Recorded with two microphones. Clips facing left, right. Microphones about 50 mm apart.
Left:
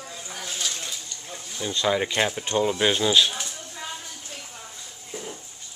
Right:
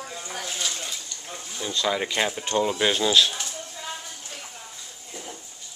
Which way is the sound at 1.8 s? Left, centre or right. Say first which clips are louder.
Left 2 dB; centre.